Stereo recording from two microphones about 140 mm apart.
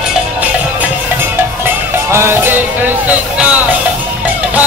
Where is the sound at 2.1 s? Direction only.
15° right (ahead or behind).